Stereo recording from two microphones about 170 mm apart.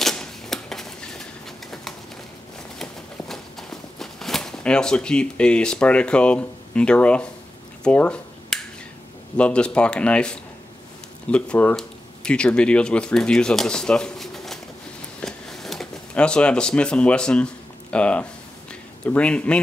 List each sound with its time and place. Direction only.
0.0 s typewriter: centre (ahead or behind)
2.8 s walk: centre (ahead or behind)
7.8 s a sound: 5° left (ahead or behind)
9.4 s speech: 5° left (ahead or behind)
15.2 s a sound: centre (ahead or behind)
17.9 s speech: 5° left (ahead or behind)